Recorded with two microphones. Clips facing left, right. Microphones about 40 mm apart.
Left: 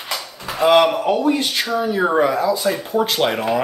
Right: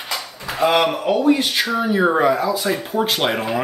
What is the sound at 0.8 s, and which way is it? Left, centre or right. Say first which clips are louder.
Speech: even; centre.